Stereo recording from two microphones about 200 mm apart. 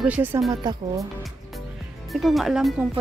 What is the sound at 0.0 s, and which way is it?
Speech, 10° right (ahead or behind).